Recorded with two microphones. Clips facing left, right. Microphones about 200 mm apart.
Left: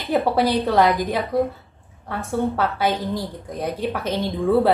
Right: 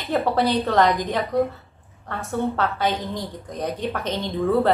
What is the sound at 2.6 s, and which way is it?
A woman's voice, 10° left (ahead or behind).